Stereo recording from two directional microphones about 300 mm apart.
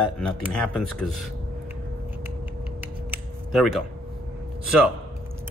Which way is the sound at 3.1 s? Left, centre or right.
Centre.